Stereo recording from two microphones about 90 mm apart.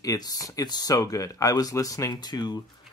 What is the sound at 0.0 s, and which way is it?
Speech, 40° left (ahead or behind).